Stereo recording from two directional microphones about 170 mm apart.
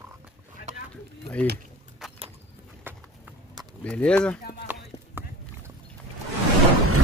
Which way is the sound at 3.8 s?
5° left (ahead or behind).